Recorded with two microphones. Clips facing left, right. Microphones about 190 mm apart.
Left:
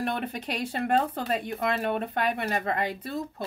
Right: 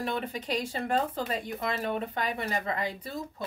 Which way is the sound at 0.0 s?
60° left (ahead or behind).